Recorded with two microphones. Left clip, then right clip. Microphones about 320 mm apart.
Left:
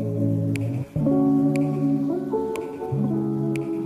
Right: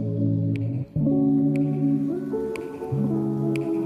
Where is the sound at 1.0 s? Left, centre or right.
Left.